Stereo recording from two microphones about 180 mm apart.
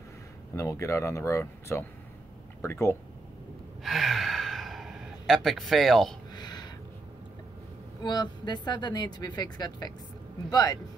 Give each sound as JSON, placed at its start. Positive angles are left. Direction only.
{"t": 0.6, "sound": "speech", "side_deg": 15}
{"t": 3.8, "sound": "gasp", "side_deg": 0}
{"t": 6.3, "sound": "a sound", "side_deg": 25}
{"t": 8.0, "sound": "speech", "side_deg": 25}